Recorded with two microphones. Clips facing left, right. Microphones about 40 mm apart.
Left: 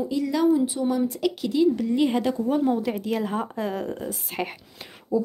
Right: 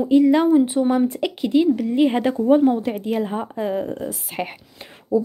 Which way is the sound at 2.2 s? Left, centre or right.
Right.